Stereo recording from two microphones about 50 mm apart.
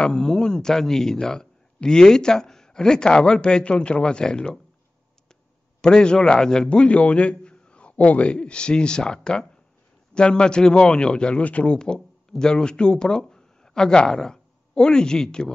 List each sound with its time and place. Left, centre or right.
0.0 s speech: centre
5.8 s a man's voice: centre